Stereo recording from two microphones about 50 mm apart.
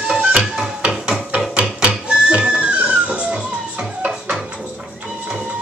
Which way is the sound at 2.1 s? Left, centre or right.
Right.